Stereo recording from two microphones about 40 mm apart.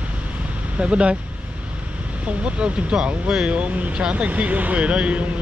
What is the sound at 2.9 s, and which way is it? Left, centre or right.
Speech, centre.